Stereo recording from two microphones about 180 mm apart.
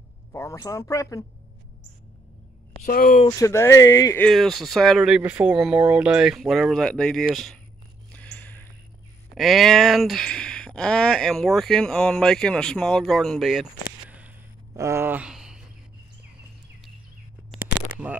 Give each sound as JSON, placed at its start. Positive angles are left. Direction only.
{"t": 0.3, "sound": "speech", "side_deg": 15}
{"t": 2.8, "sound": "speech", "side_deg": 50}
{"t": 3.3, "sound": "speech", "side_deg": 20}
{"t": 4.2, "sound": "speech", "side_deg": 0}
{"t": 8.1, "sound": "a sound", "side_deg": 5}
{"t": 9.3, "sound": "speech", "side_deg": 0}
{"t": 13.8, "sound": "a sound", "side_deg": -10}
{"t": 14.8, "sound": "speech", "side_deg": -15}